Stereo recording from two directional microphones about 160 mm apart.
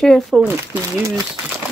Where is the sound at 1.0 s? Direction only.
20° right (ahead or behind).